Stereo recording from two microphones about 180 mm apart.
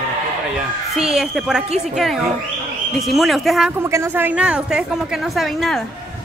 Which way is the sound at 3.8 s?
15° right (ahead or behind).